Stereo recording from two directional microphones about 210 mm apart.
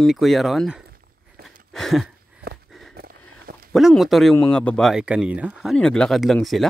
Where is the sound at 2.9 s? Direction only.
50° right (ahead or behind).